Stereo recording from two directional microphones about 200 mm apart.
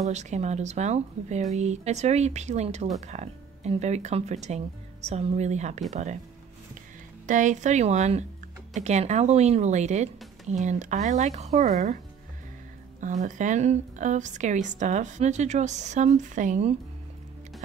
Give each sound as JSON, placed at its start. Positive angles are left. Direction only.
{"t": 0.1, "sound": "a woman's voice", "side_deg": -35}
{"t": 7.2, "sound": "a woman's voice", "side_deg": -40}
{"t": 13.0, "sound": "a woman's voice", "side_deg": -40}